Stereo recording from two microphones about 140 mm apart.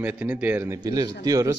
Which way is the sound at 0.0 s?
10° right (ahead or behind).